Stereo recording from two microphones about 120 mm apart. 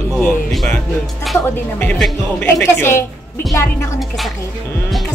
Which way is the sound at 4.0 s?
Centre (ahead or behind).